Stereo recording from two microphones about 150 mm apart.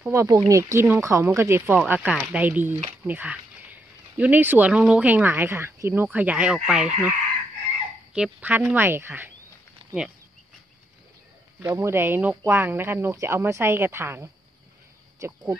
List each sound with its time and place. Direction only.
0.0 s speech: 20° right (ahead or behind)
8.1 s speech: 10° right (ahead or behind)
11.6 s speech: 20° right (ahead or behind)